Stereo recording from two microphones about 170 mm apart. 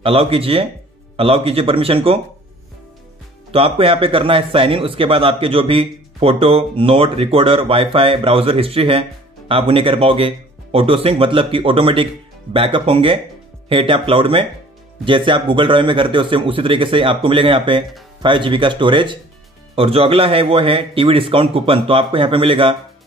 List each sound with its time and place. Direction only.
0.0 s a man's voice: 35° right (ahead or behind)
3.5 s a man's voice: 35° right (ahead or behind)